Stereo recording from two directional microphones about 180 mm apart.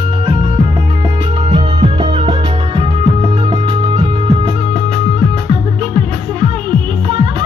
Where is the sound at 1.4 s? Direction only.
30° right (ahead or behind).